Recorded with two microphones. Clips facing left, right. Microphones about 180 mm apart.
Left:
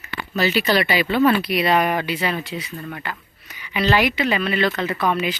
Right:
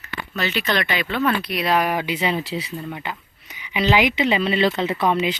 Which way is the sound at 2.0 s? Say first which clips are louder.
Right 1 dB; 20° right (ahead or behind).